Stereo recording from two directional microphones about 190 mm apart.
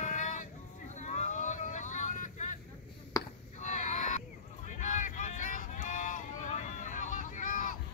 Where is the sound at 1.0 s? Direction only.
40° left (ahead or behind).